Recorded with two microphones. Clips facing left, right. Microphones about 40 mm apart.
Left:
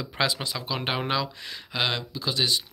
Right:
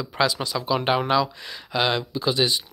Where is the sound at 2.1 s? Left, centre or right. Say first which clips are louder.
Right 4 dB; centre.